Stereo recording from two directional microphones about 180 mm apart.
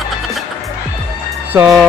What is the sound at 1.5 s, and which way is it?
Speech, 15° right (ahead or behind).